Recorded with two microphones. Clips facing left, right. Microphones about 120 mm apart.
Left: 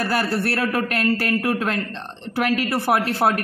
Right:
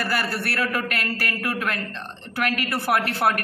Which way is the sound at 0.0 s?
25° left (ahead or behind).